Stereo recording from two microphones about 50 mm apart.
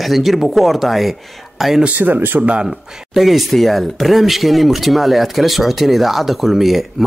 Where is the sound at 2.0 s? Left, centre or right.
Right.